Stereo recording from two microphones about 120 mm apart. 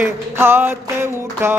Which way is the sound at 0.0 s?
20° right (ahead or behind).